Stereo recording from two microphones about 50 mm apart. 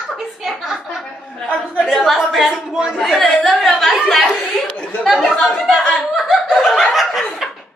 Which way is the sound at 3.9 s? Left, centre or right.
Centre.